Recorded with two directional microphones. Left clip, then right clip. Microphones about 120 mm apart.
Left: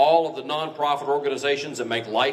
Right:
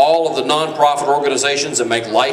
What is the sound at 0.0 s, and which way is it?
A man's voice, 40° right (ahead or behind).